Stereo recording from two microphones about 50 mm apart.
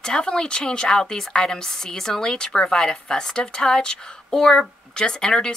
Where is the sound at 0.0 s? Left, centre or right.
Centre.